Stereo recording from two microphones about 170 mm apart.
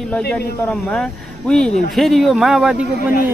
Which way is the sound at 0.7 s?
5° left (ahead or behind).